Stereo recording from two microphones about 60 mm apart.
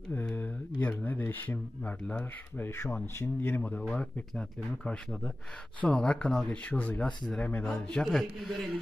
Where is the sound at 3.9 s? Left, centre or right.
Left.